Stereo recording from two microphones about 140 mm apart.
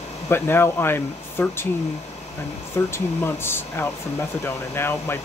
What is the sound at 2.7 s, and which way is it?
Speech, 15° left (ahead or behind).